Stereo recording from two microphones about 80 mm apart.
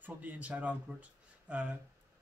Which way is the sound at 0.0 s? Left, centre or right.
Right.